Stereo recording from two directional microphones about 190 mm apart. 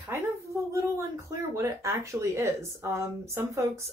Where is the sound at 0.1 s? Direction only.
15° right (ahead or behind).